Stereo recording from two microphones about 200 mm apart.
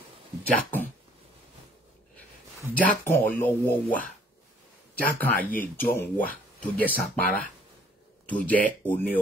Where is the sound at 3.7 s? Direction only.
45° left (ahead or behind).